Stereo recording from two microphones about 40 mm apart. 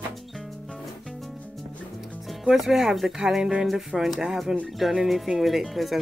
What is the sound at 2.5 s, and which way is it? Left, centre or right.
Speech, centre.